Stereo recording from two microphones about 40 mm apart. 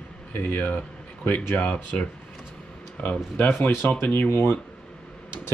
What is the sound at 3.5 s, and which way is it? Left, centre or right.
Speech, left.